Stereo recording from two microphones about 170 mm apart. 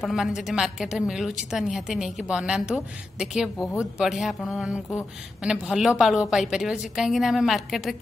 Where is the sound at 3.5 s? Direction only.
15° left (ahead or behind).